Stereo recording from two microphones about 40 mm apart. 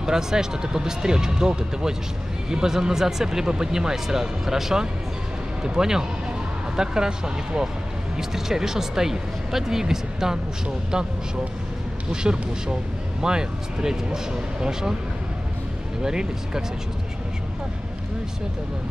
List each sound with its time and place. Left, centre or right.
0.0 s speech: centre
12.1 s speech: centre
16.0 s speech: centre